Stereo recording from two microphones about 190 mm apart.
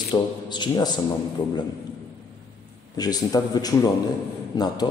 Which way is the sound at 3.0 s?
20° left (ahead or behind).